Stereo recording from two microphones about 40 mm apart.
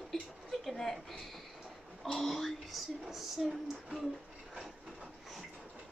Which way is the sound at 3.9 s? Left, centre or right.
Centre.